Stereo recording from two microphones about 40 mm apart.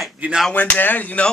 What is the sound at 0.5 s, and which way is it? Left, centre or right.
Speech, left.